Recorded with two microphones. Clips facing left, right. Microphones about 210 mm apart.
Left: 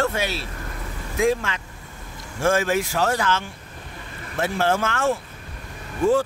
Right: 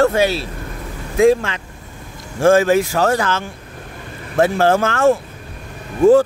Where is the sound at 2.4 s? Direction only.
35° right (ahead or behind).